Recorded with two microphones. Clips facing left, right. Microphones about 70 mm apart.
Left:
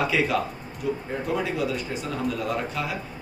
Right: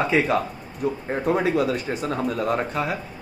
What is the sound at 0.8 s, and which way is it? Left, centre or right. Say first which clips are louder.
A man's voice: right 5 dB; right.